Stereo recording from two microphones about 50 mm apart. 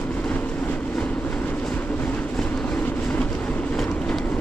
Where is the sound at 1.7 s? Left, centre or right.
Left.